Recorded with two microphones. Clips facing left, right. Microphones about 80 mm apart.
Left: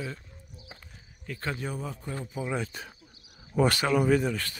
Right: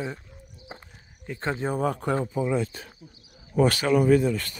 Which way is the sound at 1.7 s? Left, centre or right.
Right.